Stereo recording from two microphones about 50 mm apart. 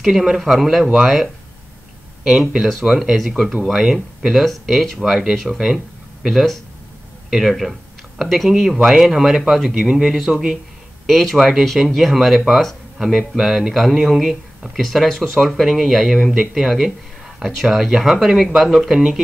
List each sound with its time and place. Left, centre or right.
0.0 s speech: centre
2.5 s speech: centre
10.3 s speech: centre
11.1 s speech: centre